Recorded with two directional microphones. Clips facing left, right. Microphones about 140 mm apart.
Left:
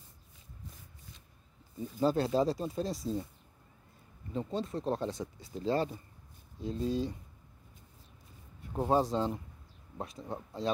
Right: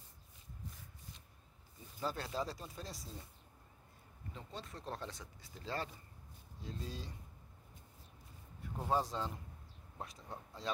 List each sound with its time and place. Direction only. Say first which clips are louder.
2.0 s speech: left 12 dB; 25° left (ahead or behind)
4.3 s speech: left 14 dB; 30° left (ahead or behind)
8.7 s speech: left 8 dB; 25° left (ahead or behind)